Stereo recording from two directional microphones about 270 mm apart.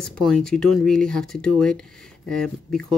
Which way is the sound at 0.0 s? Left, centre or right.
Centre.